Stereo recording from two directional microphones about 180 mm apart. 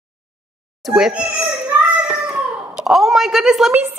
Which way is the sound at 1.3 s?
5° right (ahead or behind).